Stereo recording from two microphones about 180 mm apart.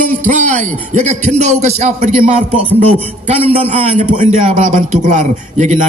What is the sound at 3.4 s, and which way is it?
A man's voice, 35° right (ahead or behind).